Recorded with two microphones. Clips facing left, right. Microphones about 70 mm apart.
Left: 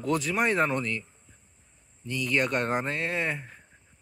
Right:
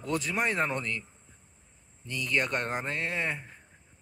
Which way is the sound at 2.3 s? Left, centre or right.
Centre.